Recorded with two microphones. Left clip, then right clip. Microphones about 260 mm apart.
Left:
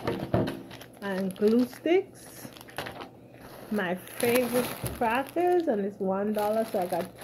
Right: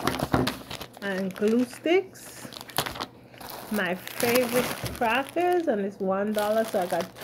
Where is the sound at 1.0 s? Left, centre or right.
Centre.